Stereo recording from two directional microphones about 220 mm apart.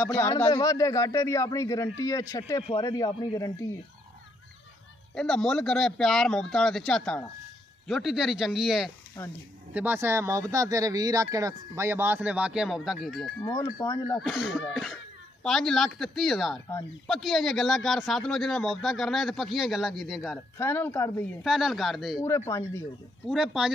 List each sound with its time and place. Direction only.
0.1 s a man's voice: 15° left (ahead or behind)
5.1 s a man's voice: 5° left (ahead or behind)
9.8 s speech: 10° right (ahead or behind)
13.4 s a man's voice: 15° left (ahead or behind)
14.2 s a man's voice: centre (ahead or behind)
21.5 s a man's voice: centre (ahead or behind)
22.2 s a man's voice: 15° left (ahead or behind)
23.2 s a man's voice: centre (ahead or behind)